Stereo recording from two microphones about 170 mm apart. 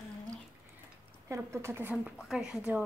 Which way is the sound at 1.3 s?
15° right (ahead or behind).